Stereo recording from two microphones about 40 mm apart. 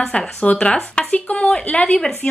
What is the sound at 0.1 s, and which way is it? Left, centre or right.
Speech, left.